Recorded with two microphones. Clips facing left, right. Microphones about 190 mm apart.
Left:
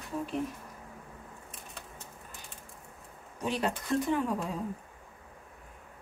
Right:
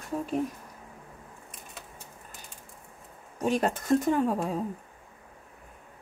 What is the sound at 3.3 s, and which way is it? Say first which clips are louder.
Speech: right 5 dB; 45° right (ahead or behind).